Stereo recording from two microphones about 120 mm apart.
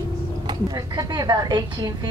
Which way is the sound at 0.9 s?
35° right (ahead or behind).